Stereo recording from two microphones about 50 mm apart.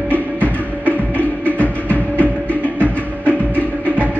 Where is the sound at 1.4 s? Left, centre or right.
Left.